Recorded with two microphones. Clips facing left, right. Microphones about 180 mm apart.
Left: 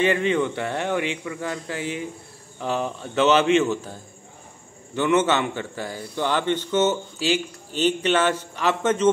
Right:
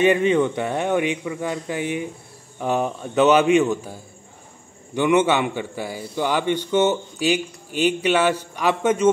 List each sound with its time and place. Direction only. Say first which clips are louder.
0.0 s a man's voice: right 4 dB; 20° right (ahead or behind)